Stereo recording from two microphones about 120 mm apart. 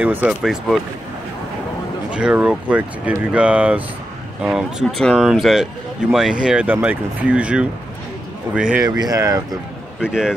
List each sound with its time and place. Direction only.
0.0 s speech: 10° right (ahead or behind)
2.0 s speech: 10° right (ahead or behind)
8.8 s speech: 35° right (ahead or behind)
9.9 s speech: 5° right (ahead or behind)